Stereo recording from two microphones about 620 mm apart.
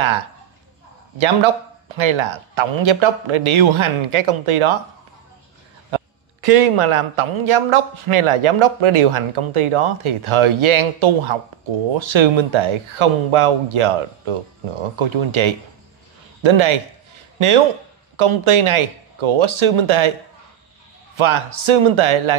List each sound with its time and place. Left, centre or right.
0.0 s speech: right
5.9 s speech: right
16.4 s a sound: right
18.1 s speech: right
21.2 s speech: right